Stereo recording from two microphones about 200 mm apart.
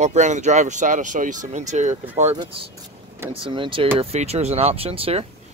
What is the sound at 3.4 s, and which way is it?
Speech, 25° right (ahead or behind).